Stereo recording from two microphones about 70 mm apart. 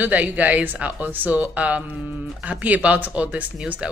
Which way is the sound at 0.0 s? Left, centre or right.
Right.